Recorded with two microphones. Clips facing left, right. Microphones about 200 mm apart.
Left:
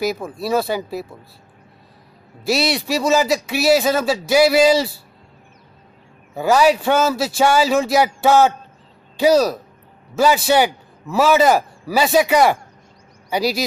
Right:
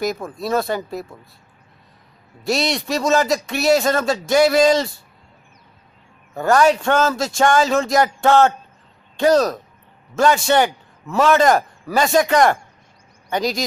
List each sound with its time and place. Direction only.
0.0 s a man's voice: 5° left (ahead or behind)
2.4 s a man's voice: 5° left (ahead or behind)
6.3 s a man's voice: 5° left (ahead or behind)